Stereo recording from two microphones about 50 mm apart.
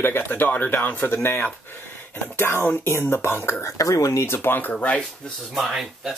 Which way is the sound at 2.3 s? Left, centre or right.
Left.